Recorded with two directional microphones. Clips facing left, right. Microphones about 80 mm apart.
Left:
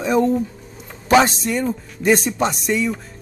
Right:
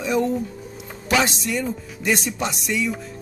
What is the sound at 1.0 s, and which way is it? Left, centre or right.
Speech, left.